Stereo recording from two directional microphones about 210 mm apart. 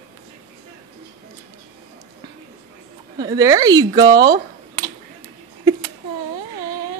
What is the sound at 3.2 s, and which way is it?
Speech, 15° right (ahead or behind).